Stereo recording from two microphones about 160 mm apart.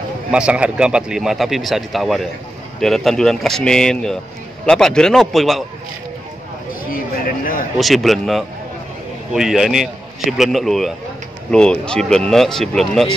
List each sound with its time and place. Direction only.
0.3 s speech: 5° right (ahead or behind)
6.7 s a sound: 60° left (ahead or behind)
7.7 s speech: centre (ahead or behind)